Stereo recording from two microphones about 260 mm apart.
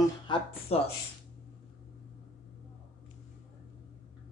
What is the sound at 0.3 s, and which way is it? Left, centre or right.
Speech, centre.